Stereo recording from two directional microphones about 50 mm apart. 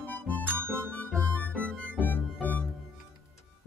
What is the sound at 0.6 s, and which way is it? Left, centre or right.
Music, right.